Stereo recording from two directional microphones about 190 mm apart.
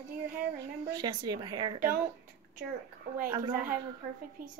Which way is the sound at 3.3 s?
20° right (ahead or behind).